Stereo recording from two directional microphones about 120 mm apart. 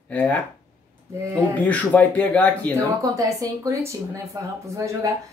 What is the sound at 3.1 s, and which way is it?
A woman's voice, 30° right (ahead or behind).